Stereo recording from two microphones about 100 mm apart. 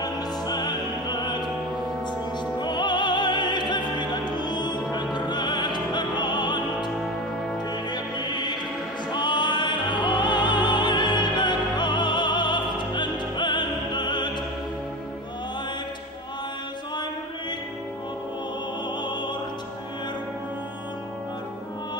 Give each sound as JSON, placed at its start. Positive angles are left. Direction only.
{"t": 0.0, "sound": "opera", "side_deg": 45}
{"t": 2.6, "sound": "opera", "side_deg": 50}
{"t": 5.1, "sound": "music", "side_deg": 50}
{"t": 7.9, "sound": "music", "side_deg": 50}
{"t": 9.1, "sound": "opera", "side_deg": 50}